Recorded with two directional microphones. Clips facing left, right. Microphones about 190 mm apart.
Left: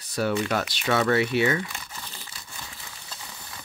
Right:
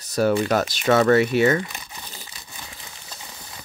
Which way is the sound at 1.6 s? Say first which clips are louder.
Right 2 dB; 20° right (ahead or behind).